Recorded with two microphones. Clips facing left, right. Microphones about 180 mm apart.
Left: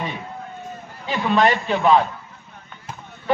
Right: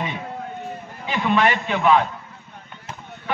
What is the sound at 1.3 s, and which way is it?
Speech, 35° left (ahead or behind).